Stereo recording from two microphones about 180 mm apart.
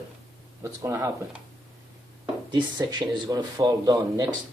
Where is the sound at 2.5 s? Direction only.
25° right (ahead or behind).